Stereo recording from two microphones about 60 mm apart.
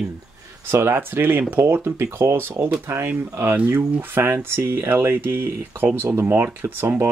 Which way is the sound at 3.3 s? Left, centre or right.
Right.